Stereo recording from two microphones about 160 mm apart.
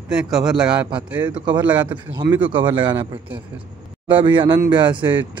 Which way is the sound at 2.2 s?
25° right (ahead or behind).